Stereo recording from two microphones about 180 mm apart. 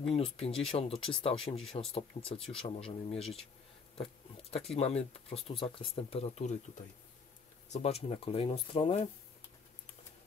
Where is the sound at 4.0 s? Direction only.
35° left (ahead or behind).